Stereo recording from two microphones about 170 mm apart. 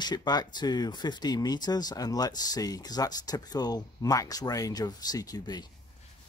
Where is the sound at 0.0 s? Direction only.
25° left (ahead or behind).